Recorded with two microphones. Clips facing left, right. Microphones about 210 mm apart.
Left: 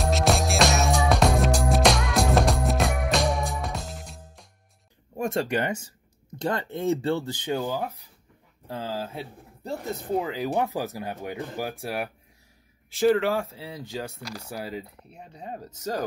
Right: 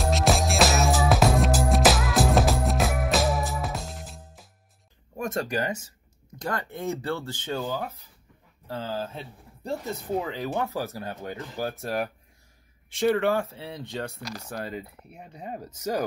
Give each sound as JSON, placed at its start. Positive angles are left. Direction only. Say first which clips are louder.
{"t": 0.0, "sound": "music", "louder": "even", "side_deg": 0}
{"t": 5.2, "sound": "speech", "louder": "left 2 dB", "side_deg": 25}
{"t": 12.9, "sound": "speech", "louder": "left 1 dB", "side_deg": 0}
{"t": 15.0, "sound": "speech", "louder": "right 1 dB", "side_deg": -5}